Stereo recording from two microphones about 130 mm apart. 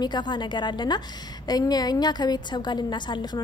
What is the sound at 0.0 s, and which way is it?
A woman's voice, 35° left (ahead or behind).